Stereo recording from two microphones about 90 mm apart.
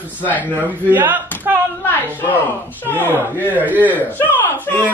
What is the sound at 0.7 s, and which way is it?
Speech, 20° right (ahead or behind).